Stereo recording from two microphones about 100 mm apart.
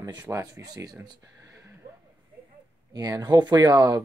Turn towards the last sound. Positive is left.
turn(degrees=-40)  # may be behind; listen again after turning